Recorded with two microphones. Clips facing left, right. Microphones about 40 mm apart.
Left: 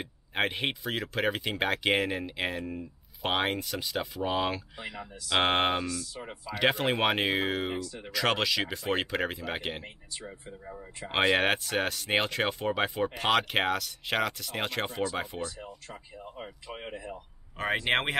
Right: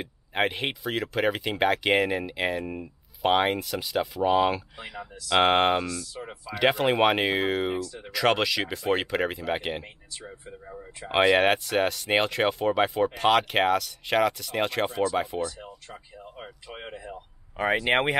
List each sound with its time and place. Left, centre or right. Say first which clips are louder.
0.0 s speech: right 3 dB; centre
2.6 s speech: right 3 dB; right
3.2 s speech: right 6 dB; centre